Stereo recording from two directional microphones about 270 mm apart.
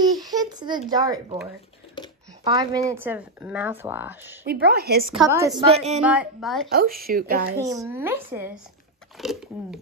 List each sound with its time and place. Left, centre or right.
0.0 s a sound: centre
0.8 s a woman's voice: centre
2.4 s a woman's voice: centre
4.5 s speech: right
5.1 s a woman's voice: centre
6.7 s speech: right
7.5 s a woman's voice: centre